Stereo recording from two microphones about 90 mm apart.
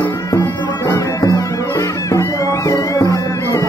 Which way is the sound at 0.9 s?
40° left (ahead or behind).